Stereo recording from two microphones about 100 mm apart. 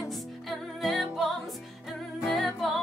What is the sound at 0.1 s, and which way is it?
Music, centre (ahead or behind).